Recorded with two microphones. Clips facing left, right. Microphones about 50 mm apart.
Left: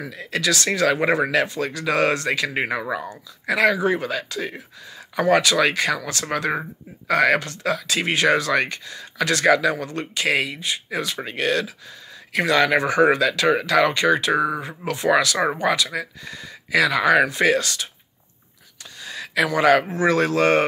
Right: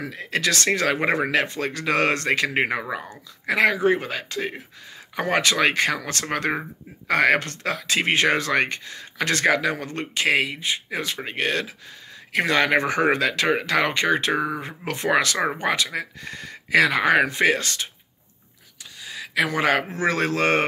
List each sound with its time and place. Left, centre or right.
0.0 s speech: right
19.0 s a sound: centre
19.4 s speech: right